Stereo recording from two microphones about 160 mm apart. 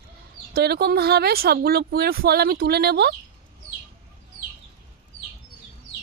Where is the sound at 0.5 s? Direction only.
85° right.